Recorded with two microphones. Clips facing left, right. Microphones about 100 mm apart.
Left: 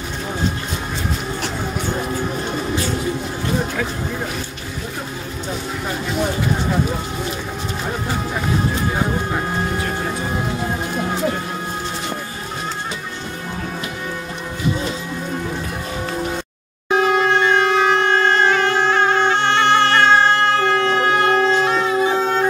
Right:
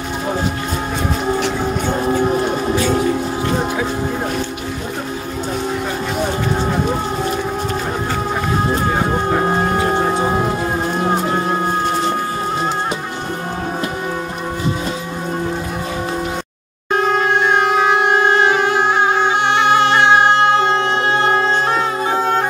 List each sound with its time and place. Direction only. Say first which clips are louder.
9.4 s music: right 6 dB; 40° right (ahead or behind)
16.9 s wind instrument: even; 5° left (ahead or behind); by 21.8 s 25° right (ahead or behind)
22.0 s music: right 1 dB; 40° right (ahead or behind)